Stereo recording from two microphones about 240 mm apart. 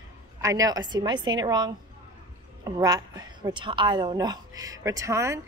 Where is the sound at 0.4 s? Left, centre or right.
Centre.